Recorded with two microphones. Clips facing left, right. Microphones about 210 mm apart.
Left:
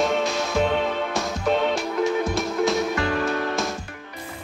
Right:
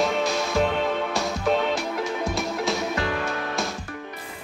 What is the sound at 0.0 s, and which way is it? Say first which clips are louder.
Music: left 1 dB; centre (ahead or behind).